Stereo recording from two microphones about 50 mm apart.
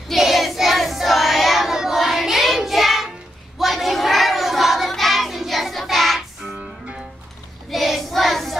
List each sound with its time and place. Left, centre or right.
0.1 s child singing: centre
6.5 s music: right
7.7 s child singing: centre